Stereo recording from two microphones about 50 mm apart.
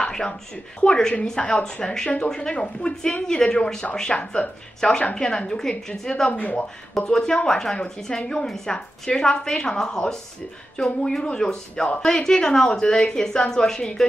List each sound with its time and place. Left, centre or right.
0.0 s a sound: centre
0.7 s a woman's voice: centre
2.5 s a woman's voice: left
6.3 s a woman's voice: left
7.0 s a woman's voice: centre